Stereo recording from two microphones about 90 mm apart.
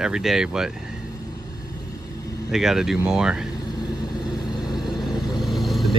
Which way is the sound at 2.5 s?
5° right (ahead or behind).